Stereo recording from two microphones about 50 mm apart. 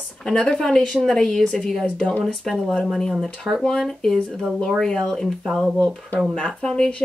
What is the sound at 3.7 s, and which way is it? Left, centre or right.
Speech, centre.